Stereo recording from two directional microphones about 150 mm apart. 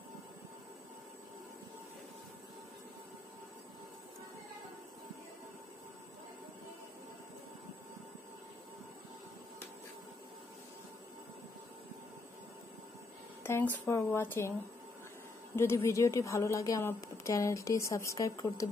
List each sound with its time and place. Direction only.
13.4 s speech: 15° left (ahead or behind)
15.5 s a woman's voice: 15° left (ahead or behind)